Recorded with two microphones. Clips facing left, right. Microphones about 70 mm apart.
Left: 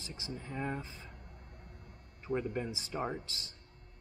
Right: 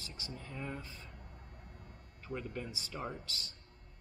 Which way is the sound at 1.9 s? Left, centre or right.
Centre.